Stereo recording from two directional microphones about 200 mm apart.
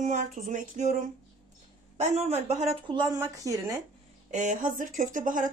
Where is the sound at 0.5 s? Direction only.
40° right (ahead or behind).